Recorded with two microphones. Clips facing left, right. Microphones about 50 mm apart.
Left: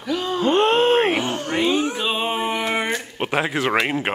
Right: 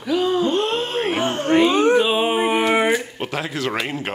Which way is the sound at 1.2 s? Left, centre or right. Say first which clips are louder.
Right 4 dB; right.